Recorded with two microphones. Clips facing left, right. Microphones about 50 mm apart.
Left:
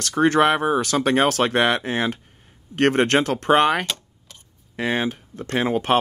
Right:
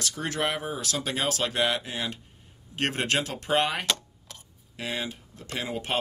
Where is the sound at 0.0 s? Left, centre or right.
Left.